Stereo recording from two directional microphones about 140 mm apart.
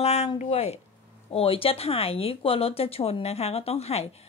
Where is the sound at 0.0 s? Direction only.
50° left (ahead or behind).